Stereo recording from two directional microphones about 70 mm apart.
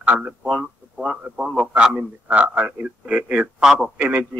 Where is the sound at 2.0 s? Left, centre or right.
Right.